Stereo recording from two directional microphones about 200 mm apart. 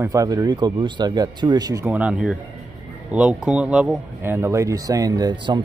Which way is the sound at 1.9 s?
5° right (ahead or behind).